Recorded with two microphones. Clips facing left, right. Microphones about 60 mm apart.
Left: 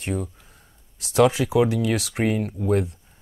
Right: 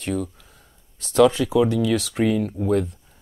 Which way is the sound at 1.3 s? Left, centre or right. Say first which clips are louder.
Right 1 dB; centre.